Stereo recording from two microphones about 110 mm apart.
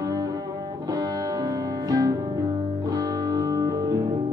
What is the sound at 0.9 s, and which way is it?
Music, 35° right (ahead or behind).